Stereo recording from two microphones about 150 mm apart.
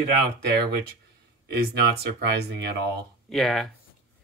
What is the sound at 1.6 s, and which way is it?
Speech, 90° right.